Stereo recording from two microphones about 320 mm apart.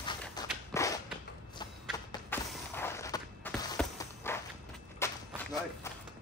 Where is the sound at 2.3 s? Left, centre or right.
Centre.